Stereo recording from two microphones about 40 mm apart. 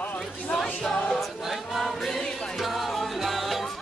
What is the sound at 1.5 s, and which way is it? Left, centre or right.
Choir, centre.